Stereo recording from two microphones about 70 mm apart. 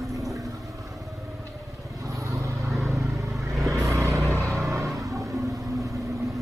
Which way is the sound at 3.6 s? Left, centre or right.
Right.